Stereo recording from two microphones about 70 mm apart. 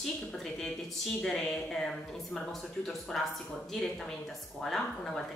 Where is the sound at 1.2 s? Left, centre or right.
Centre.